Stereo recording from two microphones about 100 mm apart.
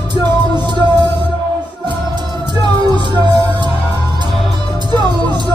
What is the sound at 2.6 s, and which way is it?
Music, 50° right (ahead or behind).